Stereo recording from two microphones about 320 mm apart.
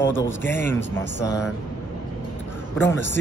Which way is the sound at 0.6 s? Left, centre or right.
Centre.